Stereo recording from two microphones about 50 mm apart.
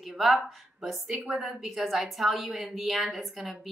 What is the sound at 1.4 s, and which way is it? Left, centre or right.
A woman's voice, centre.